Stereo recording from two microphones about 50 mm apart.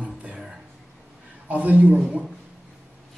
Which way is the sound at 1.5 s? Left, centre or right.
Right.